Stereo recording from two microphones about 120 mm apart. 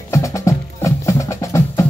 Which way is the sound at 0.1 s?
25° left (ahead or behind).